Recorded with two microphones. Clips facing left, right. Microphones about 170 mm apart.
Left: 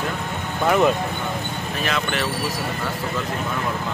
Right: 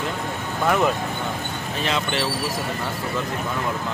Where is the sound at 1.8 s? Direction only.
25° right (ahead or behind).